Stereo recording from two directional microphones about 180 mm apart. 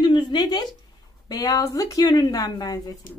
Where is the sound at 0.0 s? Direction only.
25° left (ahead or behind).